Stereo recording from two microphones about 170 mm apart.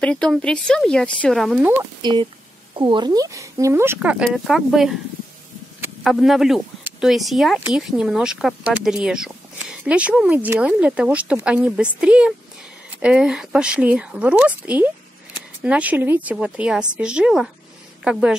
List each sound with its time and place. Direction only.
0.0 s a woman's voice: 5° left (ahead or behind)
2.0 s speech: 25° right (ahead or behind); by 4.9 s centre (ahead or behind)
6.0 s a woman's voice: centre (ahead or behind)